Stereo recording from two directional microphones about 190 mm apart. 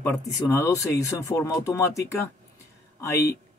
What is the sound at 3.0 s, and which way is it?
Speech, 15° left (ahead or behind).